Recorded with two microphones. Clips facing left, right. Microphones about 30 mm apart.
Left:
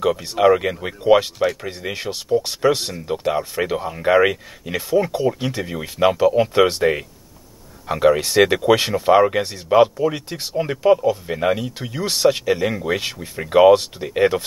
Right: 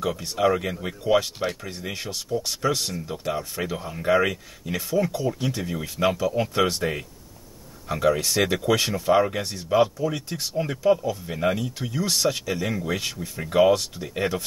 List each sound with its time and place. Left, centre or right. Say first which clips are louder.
0.0 s speech: left 7 dB; left